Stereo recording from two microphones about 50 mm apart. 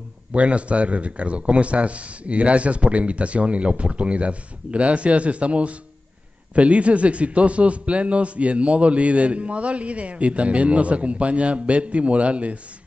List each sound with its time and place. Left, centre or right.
0.3 s a man's voice: right